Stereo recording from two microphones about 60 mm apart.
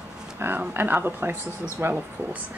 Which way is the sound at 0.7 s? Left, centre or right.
Right.